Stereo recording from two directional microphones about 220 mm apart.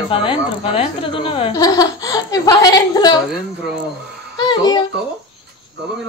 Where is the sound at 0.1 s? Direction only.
25° left (ahead or behind).